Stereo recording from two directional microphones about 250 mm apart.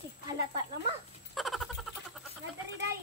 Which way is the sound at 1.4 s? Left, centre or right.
Centre.